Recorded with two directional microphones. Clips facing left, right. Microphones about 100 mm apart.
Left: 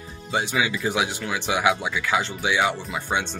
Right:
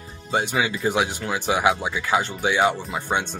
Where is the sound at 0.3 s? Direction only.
45° right (ahead or behind).